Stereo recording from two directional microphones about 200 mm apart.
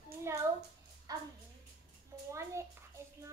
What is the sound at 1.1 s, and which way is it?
Speech, 20° right (ahead or behind).